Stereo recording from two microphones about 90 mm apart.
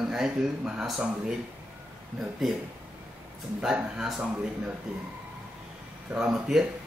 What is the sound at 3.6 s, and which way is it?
Speech, 10° right (ahead or behind).